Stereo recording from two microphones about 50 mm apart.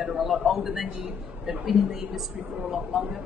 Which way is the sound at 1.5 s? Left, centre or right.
Centre.